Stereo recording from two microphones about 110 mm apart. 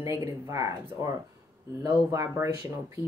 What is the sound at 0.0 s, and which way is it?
Speech, 25° right (ahead or behind).